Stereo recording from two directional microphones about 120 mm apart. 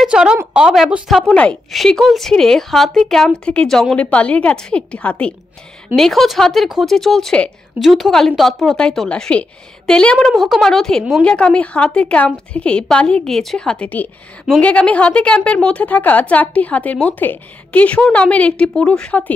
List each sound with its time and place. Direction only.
0.0 s a woman's voice: 5° right (ahead or behind)
1.1 s a woman's voice: 5° left (ahead or behind)